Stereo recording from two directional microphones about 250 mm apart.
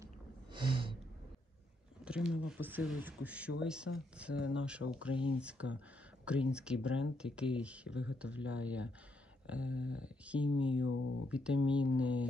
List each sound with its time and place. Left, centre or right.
0.0 s a sound: centre
2.0 s speech: centre
10.8 s speech: left
11.2 s speech: centre